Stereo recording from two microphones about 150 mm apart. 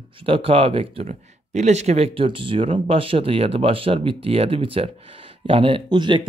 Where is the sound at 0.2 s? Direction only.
40° right (ahead or behind).